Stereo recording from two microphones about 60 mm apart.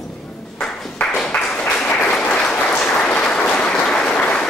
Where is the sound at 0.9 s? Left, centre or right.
Centre.